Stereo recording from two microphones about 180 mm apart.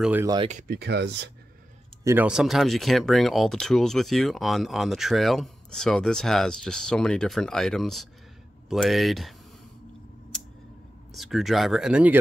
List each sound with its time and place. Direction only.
0.0 s speech: 10° right (ahead or behind)
0.5 s speech: 45° right (ahead or behind)
0.7 s speech: 70° right (ahead or behind)
2.0 s speech: 10° right (ahead or behind)
11.1 s speech: centre (ahead or behind)